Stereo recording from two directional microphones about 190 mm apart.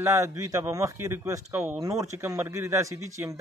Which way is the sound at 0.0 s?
15° right (ahead or behind).